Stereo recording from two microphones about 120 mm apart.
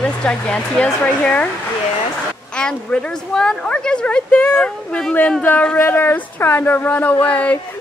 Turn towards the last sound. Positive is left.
turn(degrees=10)  # may be behind; listen again after turning